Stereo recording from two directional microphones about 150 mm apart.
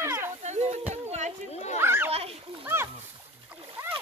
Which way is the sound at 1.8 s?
15° right (ahead or behind).